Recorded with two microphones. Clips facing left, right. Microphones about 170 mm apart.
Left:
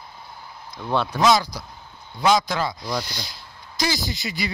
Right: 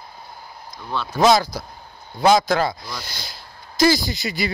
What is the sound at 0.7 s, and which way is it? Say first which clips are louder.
Speech: left 4 dB; 60° left (ahead or behind).